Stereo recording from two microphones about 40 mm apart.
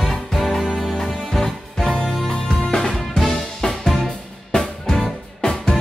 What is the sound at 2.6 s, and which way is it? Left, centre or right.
Music, centre.